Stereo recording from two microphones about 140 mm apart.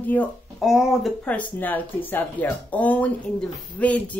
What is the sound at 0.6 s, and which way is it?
Speech, centre (ahead or behind).